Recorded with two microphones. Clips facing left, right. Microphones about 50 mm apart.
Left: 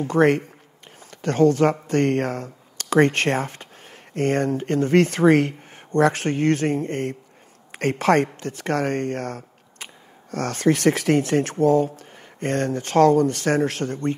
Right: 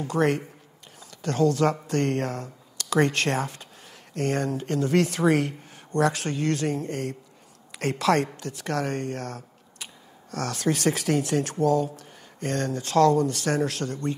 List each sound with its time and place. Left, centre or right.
0.0 s speech: left